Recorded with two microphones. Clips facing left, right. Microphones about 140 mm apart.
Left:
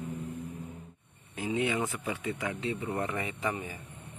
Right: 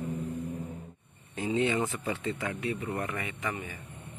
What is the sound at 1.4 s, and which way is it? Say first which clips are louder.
Speech: right 2 dB; 5° left (ahead or behind).